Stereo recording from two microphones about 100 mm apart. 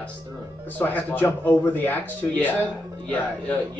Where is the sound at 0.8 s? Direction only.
15° left (ahead or behind).